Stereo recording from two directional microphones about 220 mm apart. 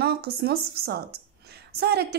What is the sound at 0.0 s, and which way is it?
A woman's voice, 45° right (ahead or behind).